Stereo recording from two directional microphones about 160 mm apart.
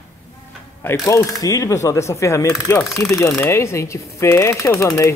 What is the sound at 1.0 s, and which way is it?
Speech, 20° left (ahead or behind).